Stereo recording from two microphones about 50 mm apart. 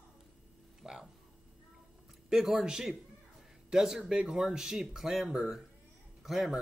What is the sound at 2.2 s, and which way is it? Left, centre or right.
A man's voice, centre.